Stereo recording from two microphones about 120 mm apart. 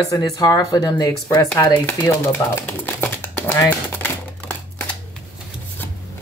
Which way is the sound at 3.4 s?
20° left (ahead or behind).